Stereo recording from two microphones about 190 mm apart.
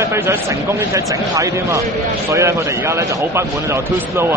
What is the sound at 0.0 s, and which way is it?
Speech, 15° right (ahead or behind).